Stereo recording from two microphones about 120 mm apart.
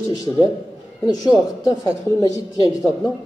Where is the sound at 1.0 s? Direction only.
35° left (ahead or behind).